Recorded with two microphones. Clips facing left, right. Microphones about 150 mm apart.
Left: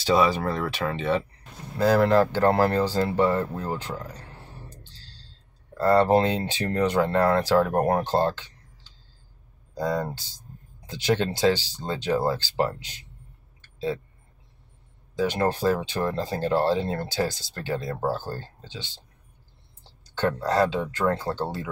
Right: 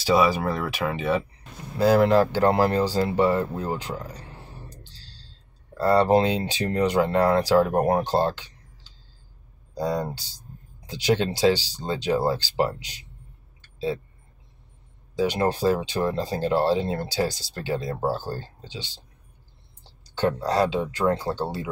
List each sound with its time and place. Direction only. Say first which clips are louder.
0.0 s speech: right 1 dB; 10° right (ahead or behind)
5.8 s speech: even; 10° right (ahead or behind)
9.8 s speech: even; 15° right (ahead or behind)
13.6 s a sound: right 1 dB; 10° right (ahead or behind)
15.1 s speech: right 1 dB; 15° right (ahead or behind)
20.2 s speech: even; 15° right (ahead or behind)